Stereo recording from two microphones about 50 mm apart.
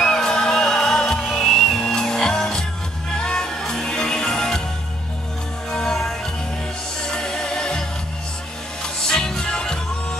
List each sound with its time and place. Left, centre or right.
0.0 s music: centre
1.3 s music: centre
2.0 s music: centre
5.7 s music: centre
7.1 s music: centre
9.0 s music: centre